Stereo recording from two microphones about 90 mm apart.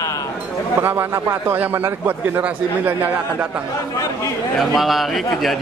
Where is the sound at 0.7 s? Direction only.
25° right (ahead or behind).